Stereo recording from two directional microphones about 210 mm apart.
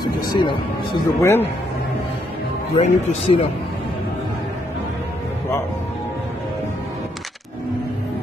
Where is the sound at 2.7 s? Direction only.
25° left (ahead or behind).